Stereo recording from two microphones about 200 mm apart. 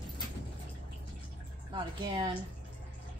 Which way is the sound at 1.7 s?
25° right (ahead or behind).